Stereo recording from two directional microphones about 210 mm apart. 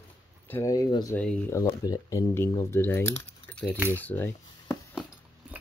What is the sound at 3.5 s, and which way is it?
Keys jangling, 5° left (ahead or behind).